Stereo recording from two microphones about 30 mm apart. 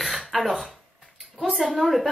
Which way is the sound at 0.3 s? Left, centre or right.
Centre.